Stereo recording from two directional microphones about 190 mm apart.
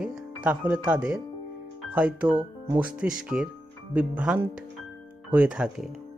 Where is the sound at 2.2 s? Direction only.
20° right (ahead or behind).